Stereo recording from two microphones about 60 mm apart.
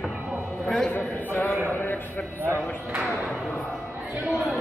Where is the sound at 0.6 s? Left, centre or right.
Centre.